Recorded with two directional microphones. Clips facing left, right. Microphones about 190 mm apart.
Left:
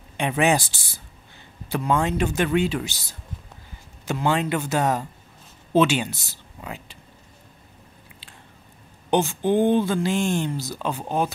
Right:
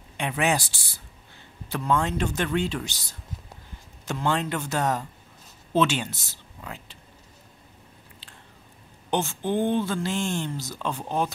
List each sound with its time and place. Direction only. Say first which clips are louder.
0.2 s a woman's voice: left 4 dB; 20° left (ahead or behind)
4.0 s speech: left 3 dB; 10° left (ahead or behind)
9.1 s speech: left 5 dB; 15° left (ahead or behind)